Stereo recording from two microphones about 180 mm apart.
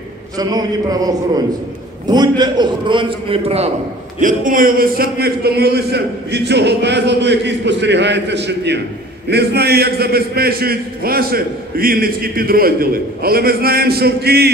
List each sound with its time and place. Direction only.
0.4 s a man's voice: 20° right (ahead or behind)
4.2 s a man's voice: 45° right (ahead or behind)